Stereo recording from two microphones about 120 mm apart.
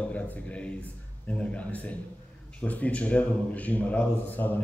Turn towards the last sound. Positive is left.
turn(degrees=15)  # may be behind; listen again after turning